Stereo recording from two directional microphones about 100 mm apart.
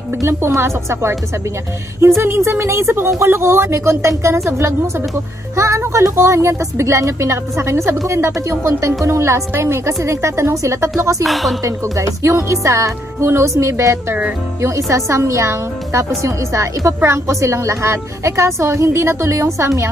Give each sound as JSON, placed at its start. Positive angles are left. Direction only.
{"t": 0.2, "sound": "speech", "side_deg": -25}
{"t": 11.2, "sound": "a woman's voice", "side_deg": 0}
{"t": 11.6, "sound": "speech", "side_deg": -30}